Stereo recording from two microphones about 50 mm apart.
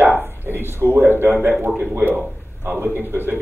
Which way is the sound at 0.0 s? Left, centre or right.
Right.